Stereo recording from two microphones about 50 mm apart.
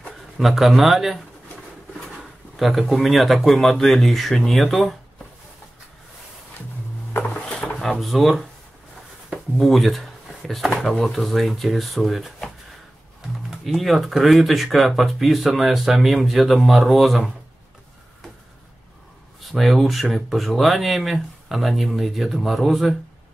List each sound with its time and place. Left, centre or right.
0.4 s speech: centre
2.5 s speech: centre
7.4 s drawer open or close: centre
7.8 s speech: centre
9.6 s speech: centre
13.7 s speech: centre
19.5 s speech: centre